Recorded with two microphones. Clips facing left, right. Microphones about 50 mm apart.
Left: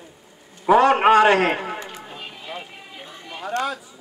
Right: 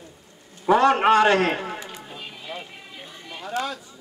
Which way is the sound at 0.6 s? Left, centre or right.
Centre.